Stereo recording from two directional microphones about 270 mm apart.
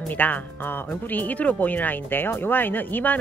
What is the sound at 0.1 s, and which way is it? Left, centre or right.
Speech, centre.